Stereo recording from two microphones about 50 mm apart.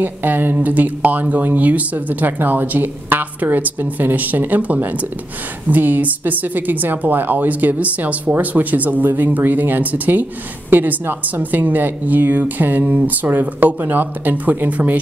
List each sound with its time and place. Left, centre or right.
0.0 s speech: right